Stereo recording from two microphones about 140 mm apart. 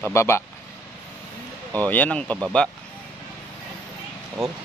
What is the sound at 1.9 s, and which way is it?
Speech, 10° left (ahead or behind).